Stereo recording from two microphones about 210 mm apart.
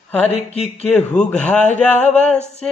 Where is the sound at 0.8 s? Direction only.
5° left (ahead or behind).